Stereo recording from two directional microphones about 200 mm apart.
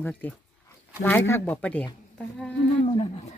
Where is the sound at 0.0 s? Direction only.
10° left (ahead or behind).